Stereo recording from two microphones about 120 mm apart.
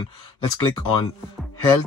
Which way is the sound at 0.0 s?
40° left (ahead or behind).